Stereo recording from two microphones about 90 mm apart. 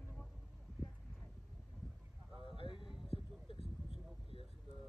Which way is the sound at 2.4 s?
70° left (ahead or behind).